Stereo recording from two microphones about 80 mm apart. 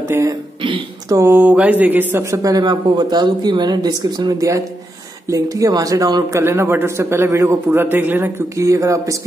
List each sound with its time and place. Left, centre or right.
0.6 s throat clearing: right
1.4 s speech: centre
2.3 s speech: right
4.4 s speech: right
6.3 s a man's voice: right
8.5 s speech: right